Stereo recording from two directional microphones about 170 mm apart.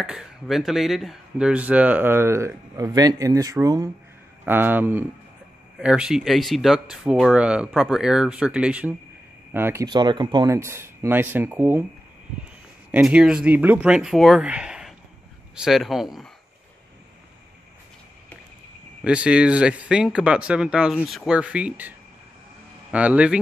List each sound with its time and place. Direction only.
0.0 s speech: 5° right (ahead or behind)
9.8 s speech: 25° right (ahead or behind)
12.9 s speech: 5° right (ahead or behind)
19.0 s speech: 5° right (ahead or behind)